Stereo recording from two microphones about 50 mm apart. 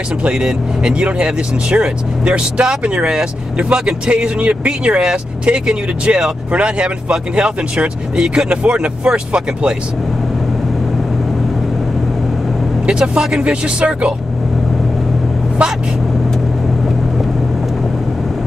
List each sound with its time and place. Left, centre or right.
0.2 s speech: centre
12.8 s speech: right